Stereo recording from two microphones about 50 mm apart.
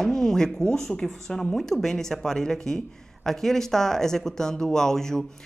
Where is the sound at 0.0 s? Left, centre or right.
Centre.